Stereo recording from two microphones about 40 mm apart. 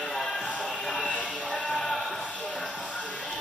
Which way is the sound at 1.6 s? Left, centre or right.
Centre.